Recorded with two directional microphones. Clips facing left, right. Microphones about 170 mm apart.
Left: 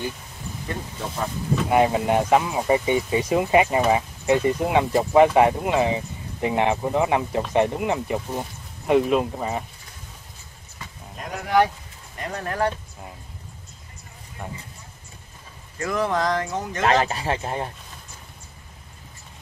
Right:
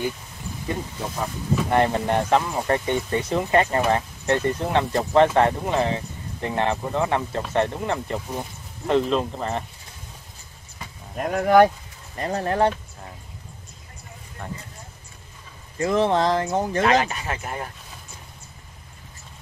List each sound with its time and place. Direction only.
1.7 s speech: 5° left (ahead or behind)
11.1 s speech: 55° right (ahead or behind)
12.2 s speech: 30° right (ahead or behind)
14.4 s speech: 10° left (ahead or behind)
15.8 s speech: 25° right (ahead or behind)
16.8 s speech: 35° left (ahead or behind)